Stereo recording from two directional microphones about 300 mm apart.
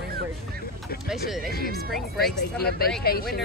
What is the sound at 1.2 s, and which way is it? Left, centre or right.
Speech, centre.